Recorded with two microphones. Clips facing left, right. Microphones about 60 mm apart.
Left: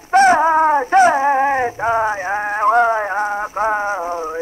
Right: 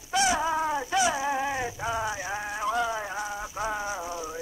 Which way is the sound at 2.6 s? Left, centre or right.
Left.